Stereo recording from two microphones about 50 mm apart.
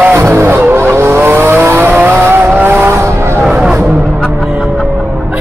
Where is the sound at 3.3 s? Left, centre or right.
Right.